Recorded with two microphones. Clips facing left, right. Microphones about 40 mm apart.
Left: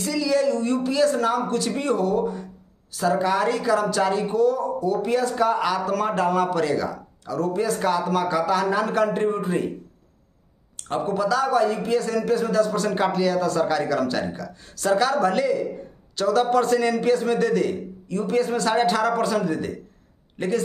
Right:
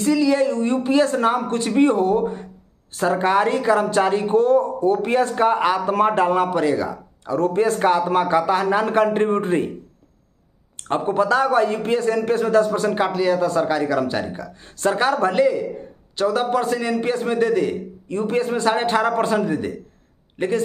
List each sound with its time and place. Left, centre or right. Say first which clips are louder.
0.0 s a man's voice: right 4 dB; right
7.2 s speech: right 5 dB; right
10.8 s a man's voice: right 4 dB; right
12.9 s a man's voice: right 2 dB; centre; by 15.3 s right
15.3 s a man's voice: right 4 dB; right
17.0 s a man's voice: even; right
18.0 s a man's voice: right 1 dB; right